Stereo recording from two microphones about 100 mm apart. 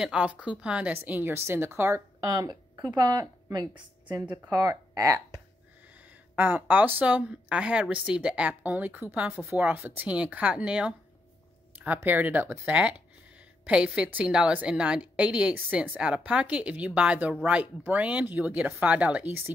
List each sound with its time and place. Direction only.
0.0 s a woman's voice: 10° right (ahead or behind)
2.2 s a woman's voice: 40° right (ahead or behind)
6.3 s speech: 20° right (ahead or behind)